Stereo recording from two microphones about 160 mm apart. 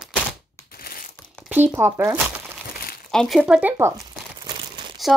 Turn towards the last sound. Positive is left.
turn(degrees=-30)  # may be behind; listen again after turning